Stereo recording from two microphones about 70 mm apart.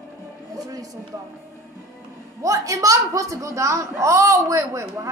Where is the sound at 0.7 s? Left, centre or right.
Right.